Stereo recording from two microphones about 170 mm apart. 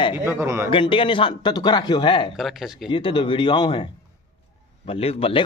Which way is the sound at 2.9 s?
30° left (ahead or behind).